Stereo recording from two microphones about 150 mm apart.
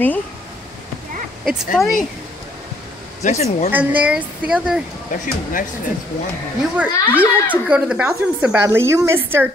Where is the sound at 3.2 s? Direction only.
50° left (ahead or behind).